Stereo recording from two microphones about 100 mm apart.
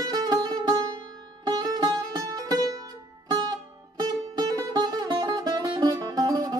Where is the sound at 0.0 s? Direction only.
40° right (ahead or behind).